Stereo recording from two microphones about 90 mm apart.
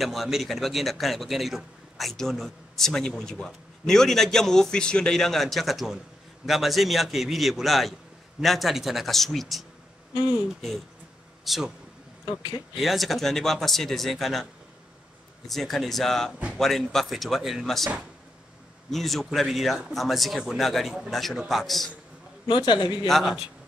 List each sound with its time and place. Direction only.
0.0 s a man's voice: centre (ahead or behind)
11.4 s a man's voice: centre (ahead or behind)
12.3 s speech: 50° left (ahead or behind)
12.7 s a man's voice: centre (ahead or behind)
22.5 s a man's voice: 60° left (ahead or behind)
23.0 s a man's voice: centre (ahead or behind)